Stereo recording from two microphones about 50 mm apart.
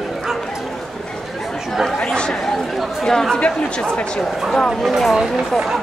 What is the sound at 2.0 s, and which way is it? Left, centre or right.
Chatter, centre.